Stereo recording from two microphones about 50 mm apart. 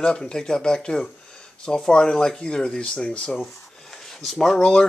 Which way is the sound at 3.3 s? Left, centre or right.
Centre.